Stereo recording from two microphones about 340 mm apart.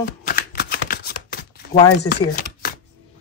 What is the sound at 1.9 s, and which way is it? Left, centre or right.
Speech, left.